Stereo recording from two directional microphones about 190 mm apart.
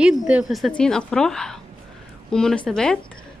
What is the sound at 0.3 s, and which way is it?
A woman's voice, centre (ahead or behind).